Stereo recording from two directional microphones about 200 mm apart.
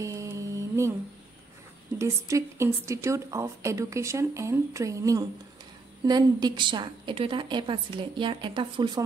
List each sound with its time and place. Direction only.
0.0 s mantra: 15° right (ahead or behind)
2.0 s a woman's voice: 15° right (ahead or behind)